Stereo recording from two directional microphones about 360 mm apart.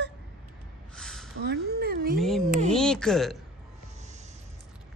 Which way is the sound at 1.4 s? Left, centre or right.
Right.